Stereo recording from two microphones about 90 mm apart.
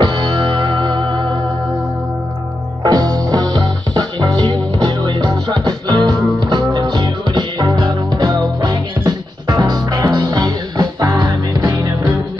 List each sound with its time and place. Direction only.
0.0 s music: 55° right (ahead or behind)
2.8 s music: 50° right (ahead or behind)
5.3 s music: 45° right (ahead or behind)